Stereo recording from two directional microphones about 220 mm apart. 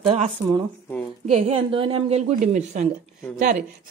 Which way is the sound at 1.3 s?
25° right (ahead or behind).